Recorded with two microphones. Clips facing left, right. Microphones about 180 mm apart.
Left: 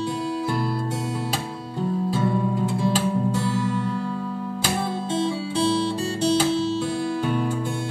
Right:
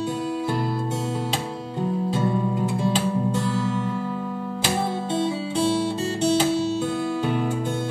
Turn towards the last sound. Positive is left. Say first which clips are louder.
# even
turn(degrees=-55)  # may be behind; listen again after turning